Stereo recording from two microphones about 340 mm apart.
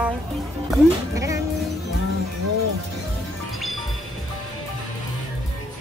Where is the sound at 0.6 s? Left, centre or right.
Centre.